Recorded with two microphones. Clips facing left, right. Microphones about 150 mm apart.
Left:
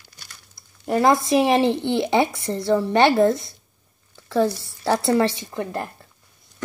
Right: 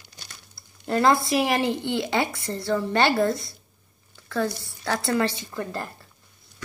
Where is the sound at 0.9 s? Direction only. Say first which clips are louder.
Left 3 dB; 15° left (ahead or behind).